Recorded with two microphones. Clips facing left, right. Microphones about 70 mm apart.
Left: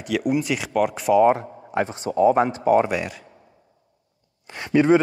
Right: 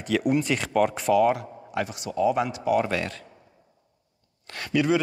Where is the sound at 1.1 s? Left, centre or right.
Left.